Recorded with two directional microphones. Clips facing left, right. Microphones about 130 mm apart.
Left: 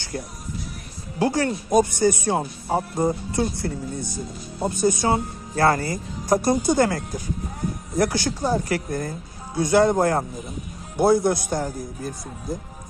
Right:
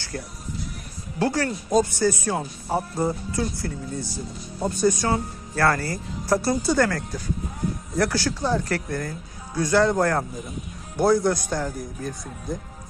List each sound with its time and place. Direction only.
0.1 s speech: 15° left (ahead or behind)